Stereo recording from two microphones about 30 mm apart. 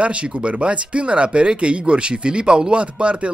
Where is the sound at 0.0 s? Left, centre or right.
Right.